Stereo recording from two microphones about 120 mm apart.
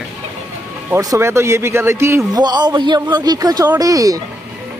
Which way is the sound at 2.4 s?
35° right (ahead or behind).